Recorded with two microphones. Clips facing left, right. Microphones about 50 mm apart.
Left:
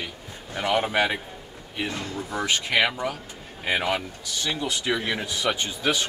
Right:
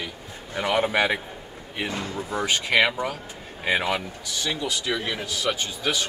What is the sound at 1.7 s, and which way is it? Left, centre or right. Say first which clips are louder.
Speech: right 1 dB; right.